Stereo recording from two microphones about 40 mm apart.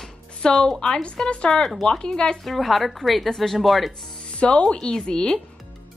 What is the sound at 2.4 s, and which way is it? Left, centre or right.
Speech, centre.